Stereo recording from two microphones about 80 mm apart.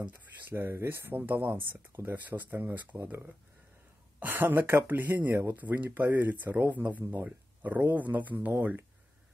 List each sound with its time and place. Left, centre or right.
0.0 s speech: right